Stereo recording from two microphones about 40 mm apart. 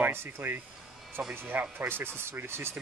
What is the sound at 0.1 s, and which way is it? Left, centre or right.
Speech, right.